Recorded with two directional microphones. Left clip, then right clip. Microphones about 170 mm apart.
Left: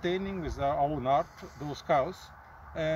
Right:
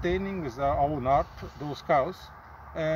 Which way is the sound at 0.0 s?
10° left (ahead or behind).